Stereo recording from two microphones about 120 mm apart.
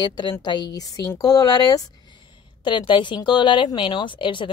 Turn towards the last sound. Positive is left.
turn(degrees=45)  # may be behind; listen again after turning